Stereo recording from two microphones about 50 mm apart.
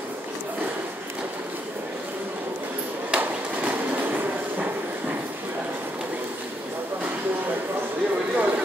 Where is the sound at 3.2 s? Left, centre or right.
Right.